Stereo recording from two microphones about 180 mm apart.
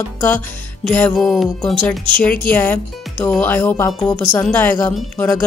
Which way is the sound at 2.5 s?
10° left (ahead or behind).